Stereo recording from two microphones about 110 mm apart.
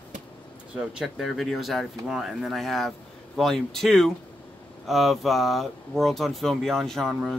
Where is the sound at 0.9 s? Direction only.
5° right (ahead or behind).